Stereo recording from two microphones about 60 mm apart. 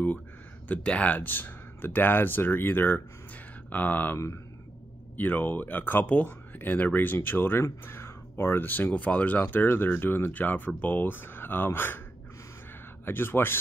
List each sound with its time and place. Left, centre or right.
0.7 s speech: left
13.0 s speech: left